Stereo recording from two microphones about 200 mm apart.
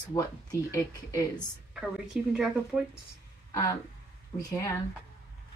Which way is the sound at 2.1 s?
5° right (ahead or behind).